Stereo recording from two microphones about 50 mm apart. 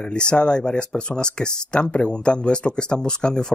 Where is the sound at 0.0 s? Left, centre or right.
Centre.